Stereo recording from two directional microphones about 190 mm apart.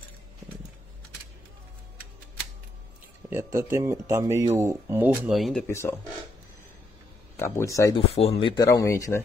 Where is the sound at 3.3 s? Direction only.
15° right (ahead or behind).